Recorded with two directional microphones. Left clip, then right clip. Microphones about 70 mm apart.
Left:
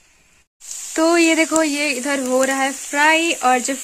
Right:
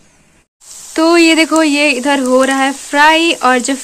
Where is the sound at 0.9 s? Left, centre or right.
Left; by 3.8 s centre.